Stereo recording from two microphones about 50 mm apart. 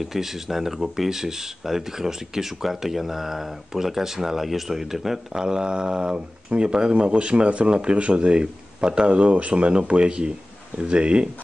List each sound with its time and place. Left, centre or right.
0.0 s speech: centre